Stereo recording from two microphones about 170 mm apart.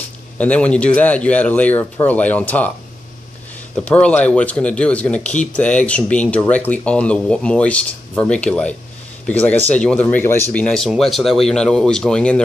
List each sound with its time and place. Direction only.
0.4 s speech: 5° left (ahead or behind)
3.7 s speech: 5° left (ahead or behind)